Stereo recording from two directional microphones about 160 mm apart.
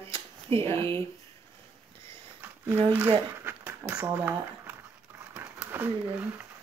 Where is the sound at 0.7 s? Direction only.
15° left (ahead or behind).